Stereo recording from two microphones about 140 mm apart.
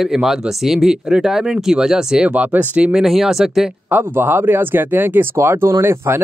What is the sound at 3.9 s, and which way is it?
Speech, 15° right (ahead or behind).